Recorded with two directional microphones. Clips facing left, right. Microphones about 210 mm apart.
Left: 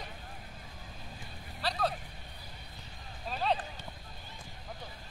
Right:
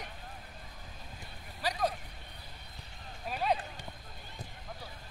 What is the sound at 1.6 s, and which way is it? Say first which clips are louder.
Vehicle: even; 10° right (ahead or behind).